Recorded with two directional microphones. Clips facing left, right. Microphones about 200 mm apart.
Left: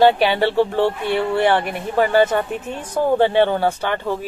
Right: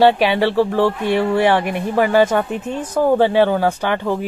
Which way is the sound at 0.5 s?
15° left (ahead or behind).